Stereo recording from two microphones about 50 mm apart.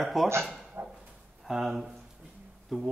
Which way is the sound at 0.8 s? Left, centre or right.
Right.